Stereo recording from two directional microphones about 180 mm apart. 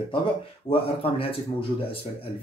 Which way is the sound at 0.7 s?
30° left (ahead or behind).